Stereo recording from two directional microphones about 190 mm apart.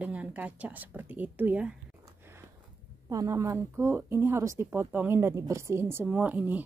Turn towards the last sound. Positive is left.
turn(degrees=-10)  # may be behind; listen again after turning